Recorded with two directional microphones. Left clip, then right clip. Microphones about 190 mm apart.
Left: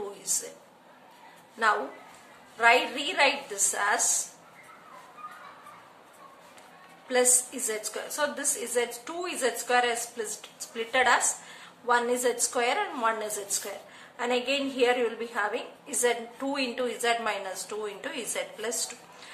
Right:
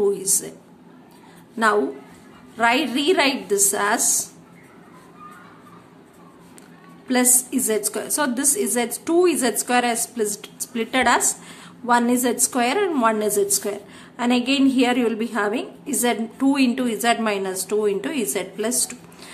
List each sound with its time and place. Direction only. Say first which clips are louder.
2.5 s a woman's voice: right 3 dB; 35° right (ahead or behind)
7.1 s a woman's voice: right 4 dB; 35° right (ahead or behind)